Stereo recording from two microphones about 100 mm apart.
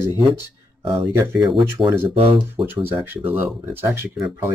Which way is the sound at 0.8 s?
65° right (ahead or behind).